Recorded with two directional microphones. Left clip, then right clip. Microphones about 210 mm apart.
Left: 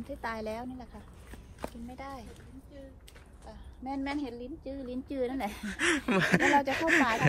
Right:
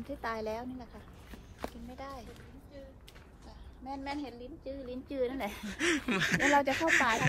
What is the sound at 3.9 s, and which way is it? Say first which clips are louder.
A woman's voice: left 4 dB; 40° left (ahead or behind).